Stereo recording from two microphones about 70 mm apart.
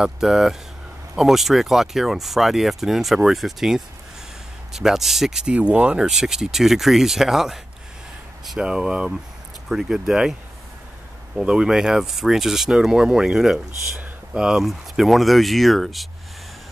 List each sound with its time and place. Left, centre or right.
0.0 s speech: centre
5.5 s speech: centre
6.0 s speech: centre
11.4 s speech: centre